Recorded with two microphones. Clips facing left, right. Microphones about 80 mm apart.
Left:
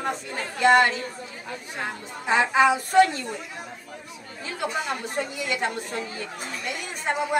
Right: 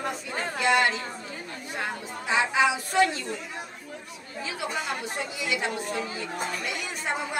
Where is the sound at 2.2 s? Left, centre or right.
Left.